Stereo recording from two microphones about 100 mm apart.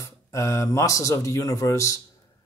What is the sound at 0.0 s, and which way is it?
Speech, 30° left (ahead or behind).